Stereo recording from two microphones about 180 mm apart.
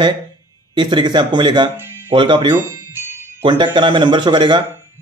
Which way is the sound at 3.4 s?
25° right (ahead or behind).